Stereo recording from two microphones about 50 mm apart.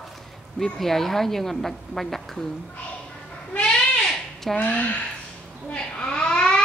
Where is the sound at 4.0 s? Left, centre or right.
Centre.